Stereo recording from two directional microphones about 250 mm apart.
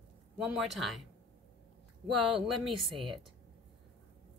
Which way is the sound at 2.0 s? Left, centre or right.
Centre.